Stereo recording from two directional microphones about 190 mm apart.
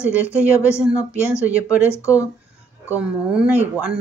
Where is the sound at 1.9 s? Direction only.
15° left (ahead or behind).